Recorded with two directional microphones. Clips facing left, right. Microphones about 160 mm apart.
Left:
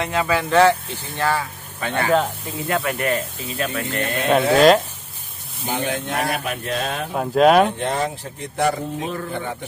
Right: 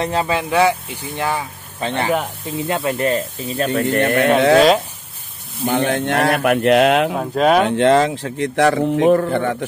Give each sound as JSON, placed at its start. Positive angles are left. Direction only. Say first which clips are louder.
{"t": 0.0, "sound": "speech", "louder": "right 2 dB", "side_deg": -30}
{"t": 0.4, "sound": "speech", "louder": "left 3 dB", "side_deg": -10}
{"t": 1.8, "sound": "speech", "louder": "even", "side_deg": -25}
{"t": 4.6, "sound": "speech", "louder": "right 1 dB", "side_deg": 0}
{"t": 5.7, "sound": "speech", "louder": "right 6 dB", "side_deg": -65}
{"t": 7.2, "sound": "speech", "louder": "left 1 dB", "side_deg": 0}
{"t": 7.6, "sound": "speech", "louder": "right 8 dB", "side_deg": -90}
{"t": 9.1, "sound": "speech", "louder": "right 11 dB", "side_deg": -60}